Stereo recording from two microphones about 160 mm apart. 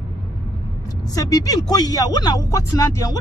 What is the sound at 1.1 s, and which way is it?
Speech, 20° left (ahead or behind).